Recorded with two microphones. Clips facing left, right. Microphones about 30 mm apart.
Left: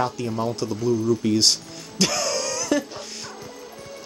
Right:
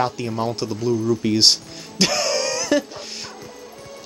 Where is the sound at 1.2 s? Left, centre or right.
Right.